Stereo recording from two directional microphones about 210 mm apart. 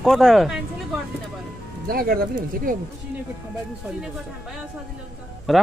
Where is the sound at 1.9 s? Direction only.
45° right (ahead or behind).